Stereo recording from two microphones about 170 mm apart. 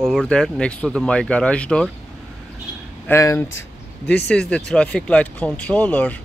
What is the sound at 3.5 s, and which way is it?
Speech, 85° left.